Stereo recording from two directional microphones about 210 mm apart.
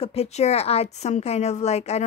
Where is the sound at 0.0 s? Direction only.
30° left (ahead or behind).